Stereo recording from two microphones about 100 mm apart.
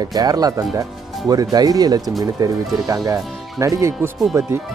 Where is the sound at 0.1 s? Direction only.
40° right (ahead or behind).